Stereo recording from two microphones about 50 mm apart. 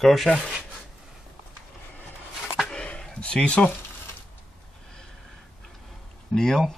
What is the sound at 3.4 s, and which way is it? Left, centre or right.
Speech, left.